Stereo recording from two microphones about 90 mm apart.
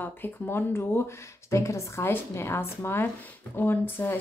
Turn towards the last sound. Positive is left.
turn(degrees=25)  # may be behind; listen again after turning